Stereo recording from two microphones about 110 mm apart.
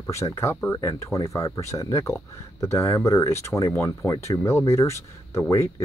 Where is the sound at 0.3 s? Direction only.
25° left (ahead or behind).